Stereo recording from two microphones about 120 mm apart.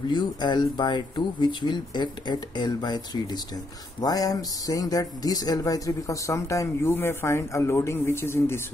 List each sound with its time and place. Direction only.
0.1 s speech: 40° left (ahead or behind); by 8.5 s 20° left (ahead or behind)